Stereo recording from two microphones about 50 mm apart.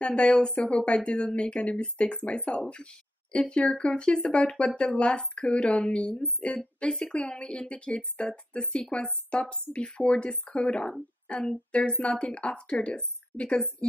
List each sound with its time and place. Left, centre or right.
0.0 s speech: left